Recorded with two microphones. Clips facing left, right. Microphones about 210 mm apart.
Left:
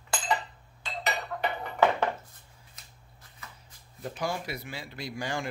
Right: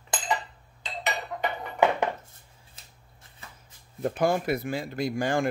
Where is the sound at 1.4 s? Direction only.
15° right (ahead or behind).